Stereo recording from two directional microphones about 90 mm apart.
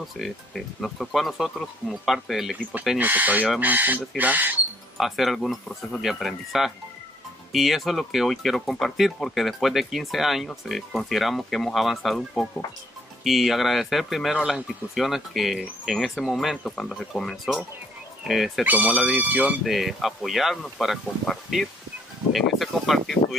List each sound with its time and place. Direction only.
0.2 s speech: centre (ahead or behind)
3.0 s speech: 20° right (ahead or behind)
4.9 s speech: centre (ahead or behind)
18.6 s speech: 15° right (ahead or behind)
19.6 s speech: centre (ahead or behind)